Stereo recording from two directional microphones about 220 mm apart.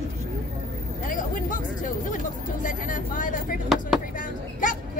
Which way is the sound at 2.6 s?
35° left (ahead or behind).